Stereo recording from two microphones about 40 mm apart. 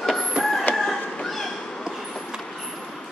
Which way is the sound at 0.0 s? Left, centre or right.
Centre.